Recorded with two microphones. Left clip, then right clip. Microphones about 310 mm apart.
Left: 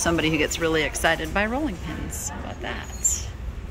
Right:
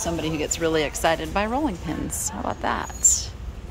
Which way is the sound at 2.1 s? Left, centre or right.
Right.